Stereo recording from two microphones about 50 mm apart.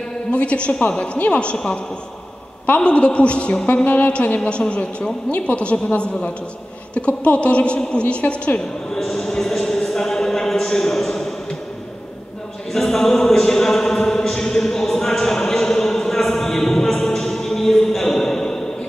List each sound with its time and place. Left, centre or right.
0.3 s a woman's voice: left
2.8 s a woman's voice: left
8.9 s a sound: centre
12.7 s chant: centre